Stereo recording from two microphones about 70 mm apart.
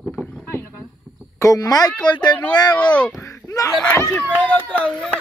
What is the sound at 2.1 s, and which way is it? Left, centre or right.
Speech, left.